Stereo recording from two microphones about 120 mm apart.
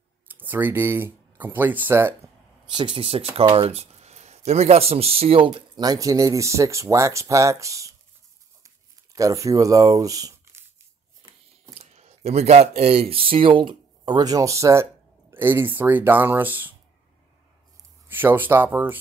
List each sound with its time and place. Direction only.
0.3 s speech: 15° right (ahead or behind)
2.7 s speech: 45° right (ahead or behind)
3.5 s a sound: 60° right (ahead or behind)
4.5 s speech: 60° right (ahead or behind); by 7.9 s 25° right (ahead or behind)
8.6 s a sound: 25° right (ahead or behind)
11.8 s speech: 65° right (ahead or behind); by 16.7 s 15° right (ahead or behind)
18.0 s speech: 15° right (ahead or behind)